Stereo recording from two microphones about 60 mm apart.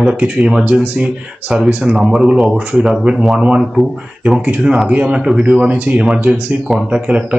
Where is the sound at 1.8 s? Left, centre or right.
Centre.